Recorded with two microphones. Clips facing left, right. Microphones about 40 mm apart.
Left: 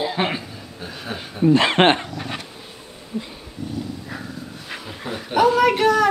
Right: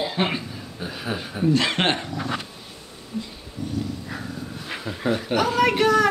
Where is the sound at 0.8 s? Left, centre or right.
Centre.